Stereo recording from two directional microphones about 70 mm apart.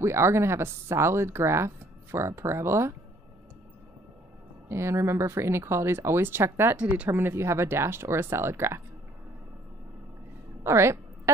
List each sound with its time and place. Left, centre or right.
0.0 s speech: right
4.6 s speech: right
10.6 s a sound: right